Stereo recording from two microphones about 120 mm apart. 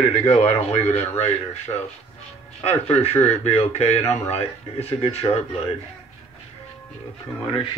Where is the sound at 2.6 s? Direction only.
60° left (ahead or behind).